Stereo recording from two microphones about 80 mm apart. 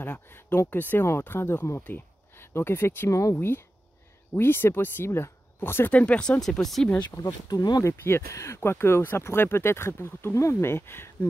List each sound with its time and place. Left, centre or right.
0.0 s speech: left
3.1 s speech: left
3.3 s speech: left
6.6 s speech: centre
7.0 s speech: left
7.8 s speech: left